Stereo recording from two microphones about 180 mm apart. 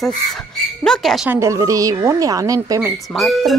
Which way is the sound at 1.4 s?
15° right (ahead or behind).